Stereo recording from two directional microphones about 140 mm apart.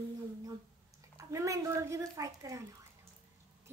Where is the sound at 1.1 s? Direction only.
20° right (ahead or behind).